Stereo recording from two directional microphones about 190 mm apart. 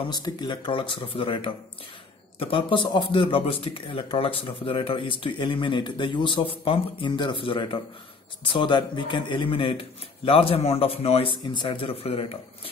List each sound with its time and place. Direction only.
0.1 s speech: 20° left (ahead or behind)